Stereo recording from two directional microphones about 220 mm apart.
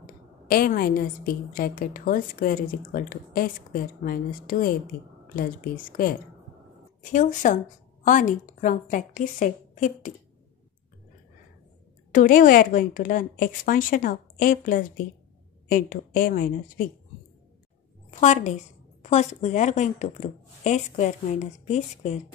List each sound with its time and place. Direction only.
0.0 s a woman's voice: 40° left (ahead or behind)
12.1 s a woman's voice: 40° left (ahead or behind)
18.2 s a woman's voice: 30° left (ahead or behind)